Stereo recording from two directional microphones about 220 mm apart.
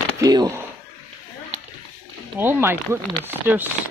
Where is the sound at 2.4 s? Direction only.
10° right (ahead or behind).